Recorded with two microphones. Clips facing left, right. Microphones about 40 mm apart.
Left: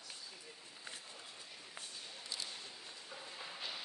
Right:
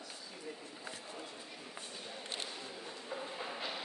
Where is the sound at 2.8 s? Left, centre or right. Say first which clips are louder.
Right 7 dB; right.